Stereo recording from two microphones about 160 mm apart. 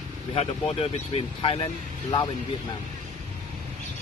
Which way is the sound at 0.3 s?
35° left (ahead or behind).